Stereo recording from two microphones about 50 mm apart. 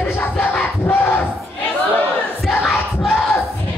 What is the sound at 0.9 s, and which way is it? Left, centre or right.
Battle cry, left.